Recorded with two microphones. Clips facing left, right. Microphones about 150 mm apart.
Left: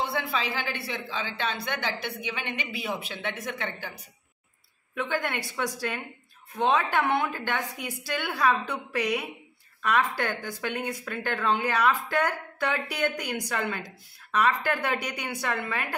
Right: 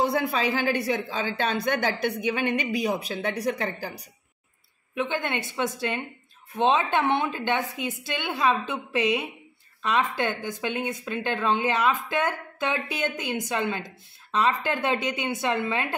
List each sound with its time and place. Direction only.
0.0 s speech: 45° right (ahead or behind)
4.9 s speech: 20° right (ahead or behind)